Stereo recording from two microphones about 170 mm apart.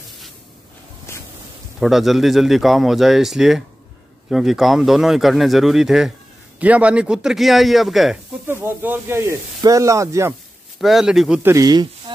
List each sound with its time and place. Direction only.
1.1 s a sound: 15° left (ahead or behind)
1.8 s a man's voice: centre (ahead or behind)
8.5 s speech: 15° right (ahead or behind)
10.8 s a man's voice: centre (ahead or behind)
11.5 s speech: 25° right (ahead or behind)